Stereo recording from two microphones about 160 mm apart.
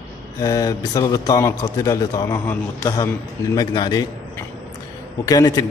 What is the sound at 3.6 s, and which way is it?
Speech, 25° left (ahead or behind).